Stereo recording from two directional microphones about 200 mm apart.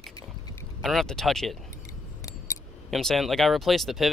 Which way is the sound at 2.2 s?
15° left (ahead or behind).